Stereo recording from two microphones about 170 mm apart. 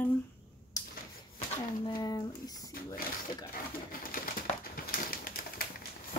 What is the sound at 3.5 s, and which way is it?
Pigeon, 60° left (ahead or behind).